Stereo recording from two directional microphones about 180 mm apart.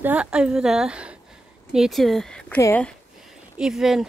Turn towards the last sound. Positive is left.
turn(degrees=0)  # may be behind; listen again after turning